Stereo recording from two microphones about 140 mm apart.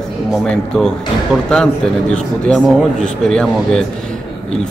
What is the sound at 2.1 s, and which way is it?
A man's voice, 5° left (ahead or behind).